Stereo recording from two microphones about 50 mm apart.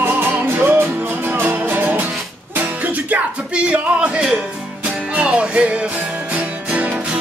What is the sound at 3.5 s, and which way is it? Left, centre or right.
Music, right.